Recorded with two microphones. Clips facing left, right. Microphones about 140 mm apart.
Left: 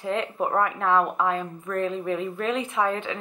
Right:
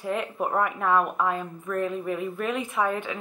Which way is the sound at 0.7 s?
10° right (ahead or behind).